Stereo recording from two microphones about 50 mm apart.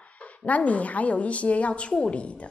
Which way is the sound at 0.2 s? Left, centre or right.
Left.